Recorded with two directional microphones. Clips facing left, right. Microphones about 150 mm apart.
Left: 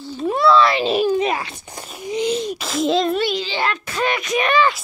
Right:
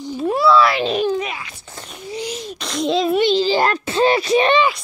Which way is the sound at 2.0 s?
20° left (ahead or behind).